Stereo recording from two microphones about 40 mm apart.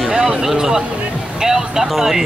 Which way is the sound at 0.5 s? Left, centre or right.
Centre.